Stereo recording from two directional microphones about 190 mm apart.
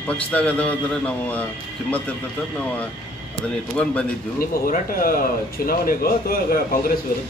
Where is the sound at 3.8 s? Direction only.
5° left (ahead or behind).